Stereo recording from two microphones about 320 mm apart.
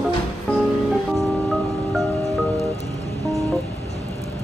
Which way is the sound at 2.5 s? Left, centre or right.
Centre.